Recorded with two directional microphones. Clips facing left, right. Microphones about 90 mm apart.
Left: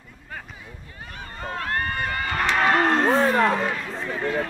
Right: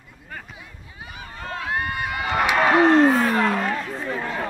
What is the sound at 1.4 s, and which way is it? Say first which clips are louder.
Run: even; centre (ahead or behind).